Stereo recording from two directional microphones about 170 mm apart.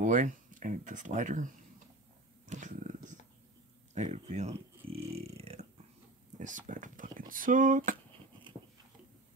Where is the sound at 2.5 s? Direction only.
50° right (ahead or behind).